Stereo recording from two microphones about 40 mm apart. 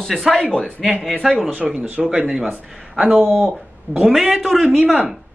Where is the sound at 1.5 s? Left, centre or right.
Right.